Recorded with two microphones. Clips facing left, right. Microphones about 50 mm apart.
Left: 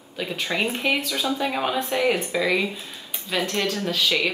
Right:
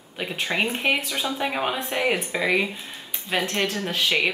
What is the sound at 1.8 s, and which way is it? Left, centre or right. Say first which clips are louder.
Speech: left 2 dB; right.